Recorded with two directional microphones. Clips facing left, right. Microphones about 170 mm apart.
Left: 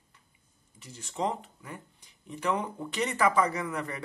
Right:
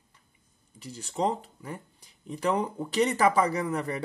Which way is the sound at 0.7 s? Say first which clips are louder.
Right 3 dB; 35° right (ahead or behind).